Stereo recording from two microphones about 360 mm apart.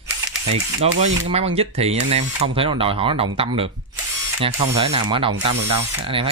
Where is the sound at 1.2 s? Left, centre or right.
Centre.